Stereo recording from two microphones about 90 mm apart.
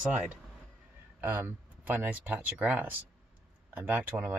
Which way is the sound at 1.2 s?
20° right (ahead or behind).